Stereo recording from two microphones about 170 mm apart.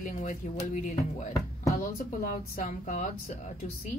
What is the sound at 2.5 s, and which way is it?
Speech, 50° left (ahead or behind).